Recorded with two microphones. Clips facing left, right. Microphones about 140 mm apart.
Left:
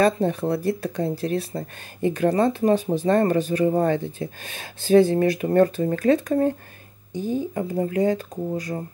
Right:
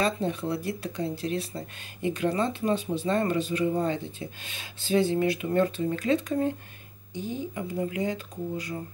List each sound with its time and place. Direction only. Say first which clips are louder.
0.0 s speech: left 7 dB; 50° left (ahead or behind)